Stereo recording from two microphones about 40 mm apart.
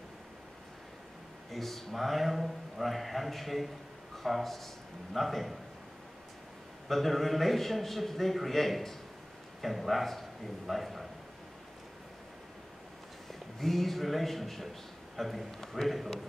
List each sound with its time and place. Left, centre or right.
1.5 s a man's voice: centre
6.9 s a man's voice: centre
13.3 s a man's voice: centre